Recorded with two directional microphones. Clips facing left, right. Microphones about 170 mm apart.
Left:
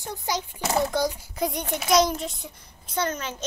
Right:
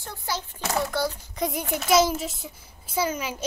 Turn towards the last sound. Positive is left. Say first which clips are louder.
# right 1 dB
turn(degrees=-10)  # may be behind; listen again after turning